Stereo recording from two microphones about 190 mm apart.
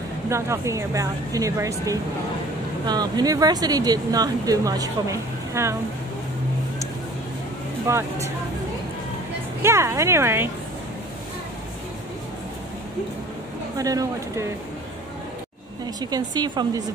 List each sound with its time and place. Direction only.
0.3 s speech: 15° right (ahead or behind)
7.8 s speech: 15° right (ahead or behind)
9.6 s speech: 15° right (ahead or behind)
13.7 s speech: 20° right (ahead or behind)
16.0 s speech: 20° right (ahead or behind)